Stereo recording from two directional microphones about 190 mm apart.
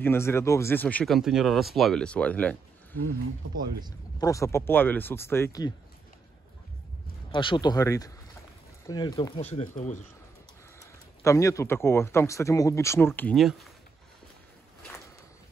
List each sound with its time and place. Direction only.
0.0 s speech: 15° left (ahead or behind)
4.2 s speech: 15° left (ahead or behind)
7.2 s speech: 25° left (ahead or behind)
9.4 s speech: 35° left (ahead or behind)
10.8 s speech: 15° left (ahead or behind); by 13.7 s centre (ahead or behind)